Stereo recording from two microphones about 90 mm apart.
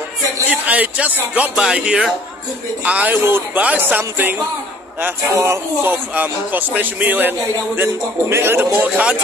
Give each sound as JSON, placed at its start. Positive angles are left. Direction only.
{"t": 0.5, "sound": "a man's voice", "side_deg": -15}
{"t": 5.3, "sound": "speech", "side_deg": -35}
{"t": 5.9, "sound": "a man's voice", "side_deg": -20}